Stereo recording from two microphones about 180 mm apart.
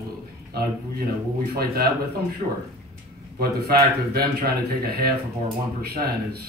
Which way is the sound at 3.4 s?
60° right (ahead or behind).